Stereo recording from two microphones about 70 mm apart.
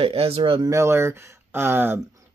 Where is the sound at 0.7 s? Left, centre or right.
Right.